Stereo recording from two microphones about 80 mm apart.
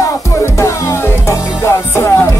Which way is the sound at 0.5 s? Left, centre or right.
Left.